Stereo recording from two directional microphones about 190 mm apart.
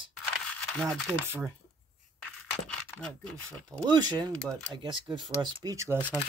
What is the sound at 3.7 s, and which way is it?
Speech, 15° right (ahead or behind).